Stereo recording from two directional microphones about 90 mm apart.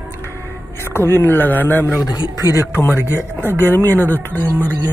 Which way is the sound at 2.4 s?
35° right (ahead or behind).